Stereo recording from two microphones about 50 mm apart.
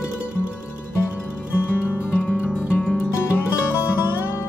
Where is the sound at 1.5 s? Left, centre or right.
Left.